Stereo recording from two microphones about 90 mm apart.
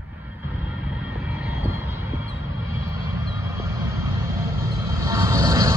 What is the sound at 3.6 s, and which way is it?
Vehicle, 35° right (ahead or behind).